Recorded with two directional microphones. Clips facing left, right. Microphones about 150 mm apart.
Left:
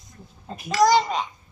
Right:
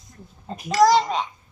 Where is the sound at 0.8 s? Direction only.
Centre (ahead or behind).